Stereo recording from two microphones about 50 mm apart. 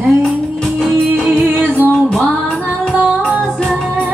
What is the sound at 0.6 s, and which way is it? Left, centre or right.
Music, centre.